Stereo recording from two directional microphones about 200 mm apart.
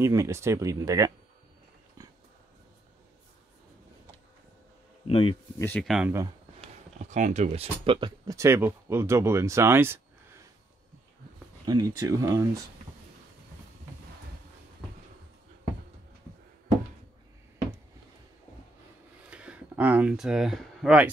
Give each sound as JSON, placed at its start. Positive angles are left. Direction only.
{"t": 0.0, "sound": "speech", "side_deg": -15}
{"t": 2.0, "sound": "dog", "side_deg": -20}
{"t": 5.0, "sound": "a sound", "side_deg": 30}
{"t": 5.6, "sound": "speech", "side_deg": 5}
{"t": 7.1, "sound": "speech", "side_deg": -35}
{"t": 11.6, "sound": "speech", "side_deg": -20}
{"t": 19.3, "sound": "a sound", "side_deg": -5}